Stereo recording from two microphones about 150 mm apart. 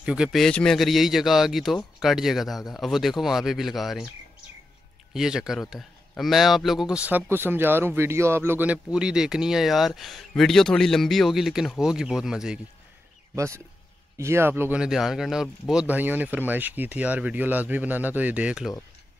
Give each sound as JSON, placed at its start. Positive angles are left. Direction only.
{"t": 0.0, "sound": "speech", "side_deg": -5}
{"t": 5.1, "sound": "speech", "side_deg": -5}
{"t": 14.1, "sound": "speech", "side_deg": -20}